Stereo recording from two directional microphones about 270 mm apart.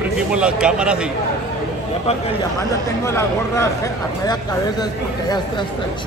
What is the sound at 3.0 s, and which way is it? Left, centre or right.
Speech, centre.